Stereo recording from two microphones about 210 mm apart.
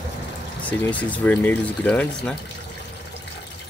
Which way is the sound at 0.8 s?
5° left (ahead or behind).